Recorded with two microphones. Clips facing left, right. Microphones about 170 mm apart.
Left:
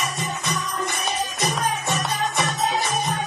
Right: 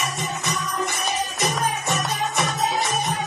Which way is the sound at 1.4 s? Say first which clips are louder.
Even; centre (ahead or behind).